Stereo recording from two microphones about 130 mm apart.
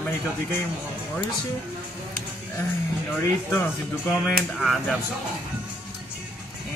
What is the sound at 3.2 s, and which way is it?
Speech, 15° left (ahead or behind).